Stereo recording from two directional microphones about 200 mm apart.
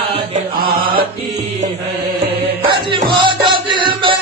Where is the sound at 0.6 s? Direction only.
50° right (ahead or behind).